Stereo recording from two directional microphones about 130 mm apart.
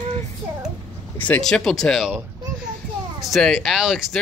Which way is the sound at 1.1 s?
10° left (ahead or behind).